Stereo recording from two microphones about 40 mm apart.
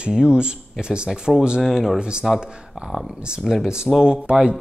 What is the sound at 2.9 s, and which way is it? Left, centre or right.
Speech, centre.